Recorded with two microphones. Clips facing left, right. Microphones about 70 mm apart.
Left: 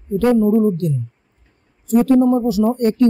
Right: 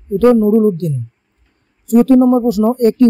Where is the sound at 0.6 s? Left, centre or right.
Right.